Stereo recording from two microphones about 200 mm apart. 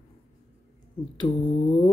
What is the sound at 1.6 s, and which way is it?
Speech, 25° left (ahead or behind).